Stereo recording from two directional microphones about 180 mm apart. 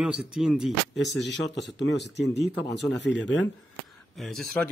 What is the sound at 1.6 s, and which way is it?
Speech, 75° left (ahead or behind).